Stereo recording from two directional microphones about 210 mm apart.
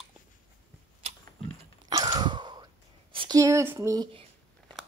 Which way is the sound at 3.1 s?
20° right (ahead or behind).